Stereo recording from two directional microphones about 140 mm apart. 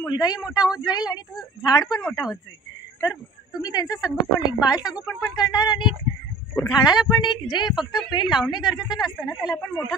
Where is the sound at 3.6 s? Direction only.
30° left (ahead or behind).